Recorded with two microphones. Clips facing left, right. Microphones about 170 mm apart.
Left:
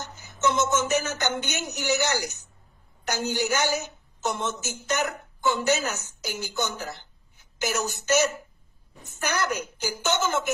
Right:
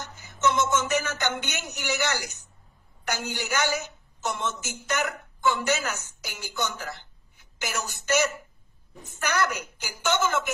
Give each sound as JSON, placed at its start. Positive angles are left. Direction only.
{"t": 0.4, "sound": "music", "side_deg": 25}
{"t": 1.5, "sound": "a woman's voice", "side_deg": 25}